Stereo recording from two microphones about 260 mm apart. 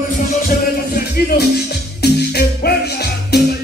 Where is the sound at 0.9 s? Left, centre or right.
Left.